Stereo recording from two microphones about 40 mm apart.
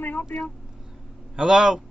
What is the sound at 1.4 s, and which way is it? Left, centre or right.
Speech, centre.